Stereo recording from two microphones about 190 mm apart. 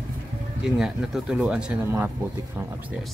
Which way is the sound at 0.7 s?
5° right (ahead or behind).